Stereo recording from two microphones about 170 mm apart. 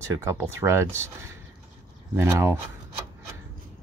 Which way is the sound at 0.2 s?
15° right (ahead or behind).